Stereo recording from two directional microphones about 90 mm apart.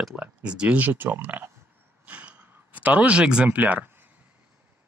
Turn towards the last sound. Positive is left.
turn(degrees=-20)  # may be behind; listen again after turning